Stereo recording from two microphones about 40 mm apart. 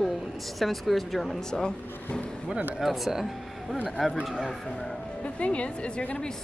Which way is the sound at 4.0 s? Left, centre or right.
Centre.